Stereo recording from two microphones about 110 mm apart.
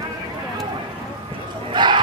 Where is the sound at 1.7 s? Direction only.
45° right (ahead or behind).